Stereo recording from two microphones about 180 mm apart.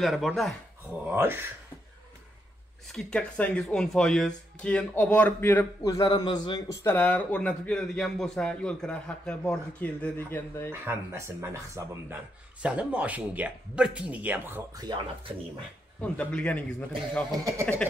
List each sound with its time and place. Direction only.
0.0 s speech: centre (ahead or behind)
1.0 s speech: 10° right (ahead or behind)
2.9 s a man's voice: 5° left (ahead or behind)
10.7 s speech: 15° right (ahead or behind)
16.0 s a man's voice: 5° left (ahead or behind)
17.7 s a man's voice: 5° left (ahead or behind)